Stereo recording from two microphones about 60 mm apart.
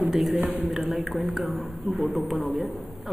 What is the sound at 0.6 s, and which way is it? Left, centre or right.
A woman's voice, centre.